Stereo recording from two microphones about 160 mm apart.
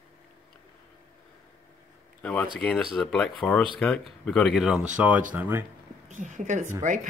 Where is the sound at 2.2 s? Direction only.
10° left (ahead or behind); by 5.6 s 10° right (ahead or behind).